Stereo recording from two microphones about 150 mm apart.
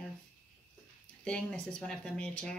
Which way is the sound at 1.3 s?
5° left (ahead or behind).